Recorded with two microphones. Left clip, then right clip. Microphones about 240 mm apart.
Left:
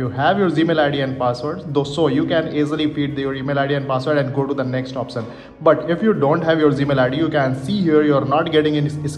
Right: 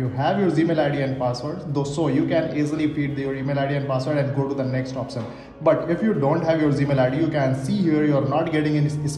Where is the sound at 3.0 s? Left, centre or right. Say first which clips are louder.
Left 4 dB; left.